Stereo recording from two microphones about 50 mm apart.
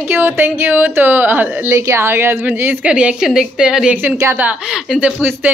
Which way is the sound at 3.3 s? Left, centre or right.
Centre.